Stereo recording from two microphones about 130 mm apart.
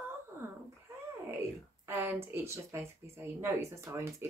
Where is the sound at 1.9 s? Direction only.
20° right (ahead or behind).